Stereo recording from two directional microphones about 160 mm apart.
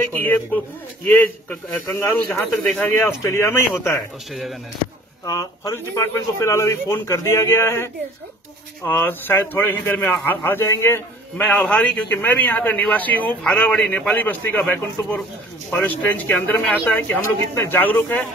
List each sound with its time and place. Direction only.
0.1 s speech: 10° left (ahead or behind)
2.6 s speech: centre (ahead or behind)
3.0 s speech: 15° left (ahead or behind)
4.3 s speech: centre (ahead or behind)
5.2 s speech: 20° left (ahead or behind)